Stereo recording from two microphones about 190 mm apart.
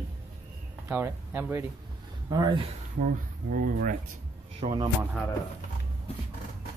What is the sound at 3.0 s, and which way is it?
Speech, 45° right (ahead or behind).